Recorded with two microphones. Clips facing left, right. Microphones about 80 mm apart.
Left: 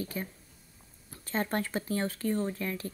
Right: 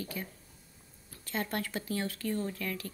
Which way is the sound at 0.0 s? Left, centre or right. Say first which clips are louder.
Left 3 dB; left.